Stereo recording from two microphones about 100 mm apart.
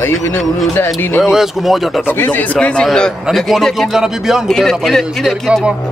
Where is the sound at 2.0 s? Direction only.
20° left (ahead or behind).